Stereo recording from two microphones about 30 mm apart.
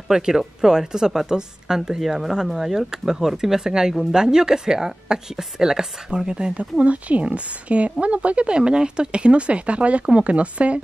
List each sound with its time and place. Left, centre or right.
0.1 s a woman's voice: centre
2.0 s a woman's voice: centre; by 6.3 s right
6.3 s a woman's voice: right
8.5 s speech: right